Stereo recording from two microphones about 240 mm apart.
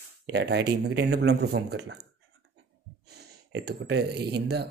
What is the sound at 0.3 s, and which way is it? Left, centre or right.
Speech, right.